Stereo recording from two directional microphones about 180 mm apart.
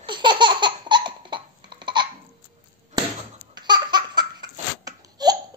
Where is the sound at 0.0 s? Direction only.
25° right (ahead or behind).